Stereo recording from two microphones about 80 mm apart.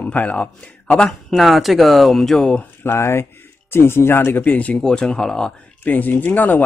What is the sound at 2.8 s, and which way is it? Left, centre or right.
Speech, left.